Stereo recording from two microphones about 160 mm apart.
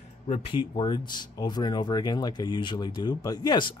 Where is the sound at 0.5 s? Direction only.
30° left (ahead or behind).